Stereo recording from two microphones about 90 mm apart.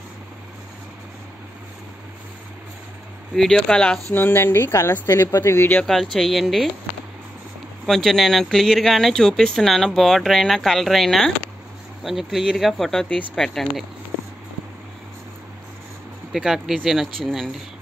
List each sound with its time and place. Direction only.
3.3 s speech: 5° left (ahead or behind)
4.1 s speech: 25° left (ahead or behind)
5.9 s speech: centre (ahead or behind)
7.8 s speech: centre (ahead or behind)
16.3 s speech: 5° right (ahead or behind)